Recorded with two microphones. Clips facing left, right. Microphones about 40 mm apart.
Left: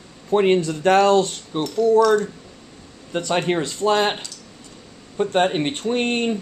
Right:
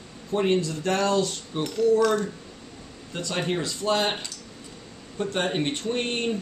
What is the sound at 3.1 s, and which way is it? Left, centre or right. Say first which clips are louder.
Speech: left 7 dB; left.